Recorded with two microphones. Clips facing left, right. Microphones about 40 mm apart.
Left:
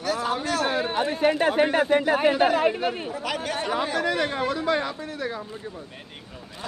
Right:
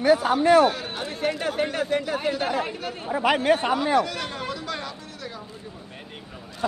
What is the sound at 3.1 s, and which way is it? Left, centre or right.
Speech, right.